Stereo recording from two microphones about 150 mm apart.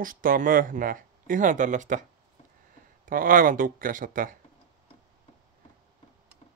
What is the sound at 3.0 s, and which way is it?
Speech, 65° right (ahead or behind).